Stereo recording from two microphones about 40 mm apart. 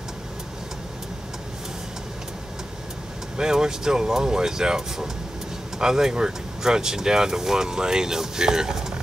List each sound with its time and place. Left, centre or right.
3.3 s speech: centre